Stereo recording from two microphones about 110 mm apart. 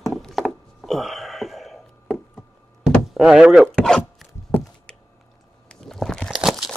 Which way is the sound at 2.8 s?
5° right (ahead or behind).